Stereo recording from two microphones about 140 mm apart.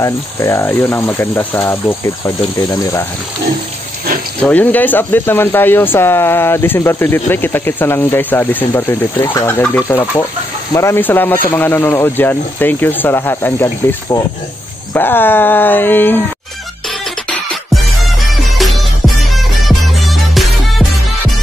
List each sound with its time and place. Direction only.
0.0 s speech: 20° left (ahead or behind)
4.5 s speech: 10° left (ahead or behind)
18.6 s music: centre (ahead or behind)